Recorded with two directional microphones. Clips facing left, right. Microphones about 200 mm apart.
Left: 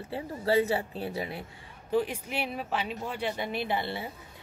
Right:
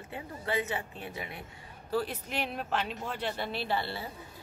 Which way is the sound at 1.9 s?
15° left (ahead or behind).